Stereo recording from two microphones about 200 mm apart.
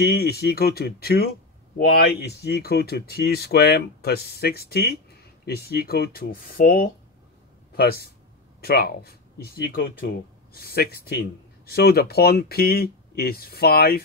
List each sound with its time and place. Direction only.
0.0 s speech: 55° left (ahead or behind)